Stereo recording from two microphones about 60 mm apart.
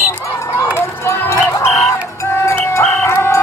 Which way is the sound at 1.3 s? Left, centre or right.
Left.